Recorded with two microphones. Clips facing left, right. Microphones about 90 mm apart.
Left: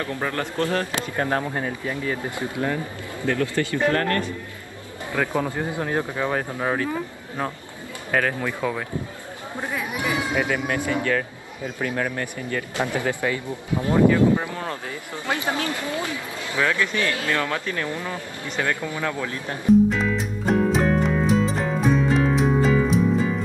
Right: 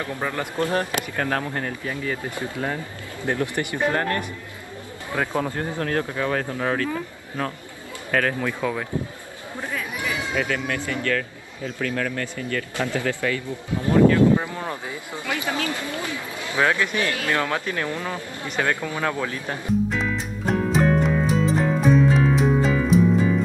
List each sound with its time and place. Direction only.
0.0 s speech: 15° right (ahead or behind)
1.1 s speech: 15° left (ahead or behind)
2.7 s speech: 20° right (ahead or behind)
5.3 s a man's voice: 10° left (ahead or behind)
14.5 s speech: 15° right (ahead or behind)
15.2 s a man's voice: 20° left (ahead or behind)
16.5 s speech: 20° right (ahead or behind)
19.9 s music: centre (ahead or behind)